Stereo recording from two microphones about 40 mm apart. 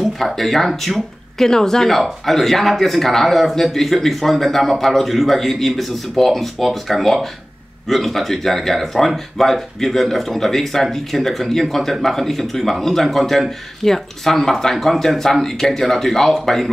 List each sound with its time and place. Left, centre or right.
0.4 s speech: centre